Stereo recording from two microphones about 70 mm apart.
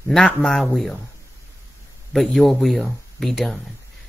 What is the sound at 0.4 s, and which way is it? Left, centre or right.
Speech, centre.